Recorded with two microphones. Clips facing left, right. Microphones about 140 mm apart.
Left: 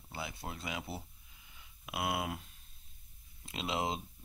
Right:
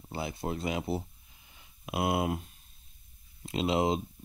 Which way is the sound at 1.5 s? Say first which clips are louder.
Right 7 dB; 30° right (ahead or behind).